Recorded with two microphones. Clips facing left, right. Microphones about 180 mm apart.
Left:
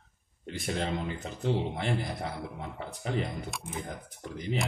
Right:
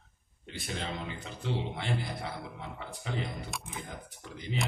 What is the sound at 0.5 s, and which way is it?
A man's voice, 45° left (ahead or behind).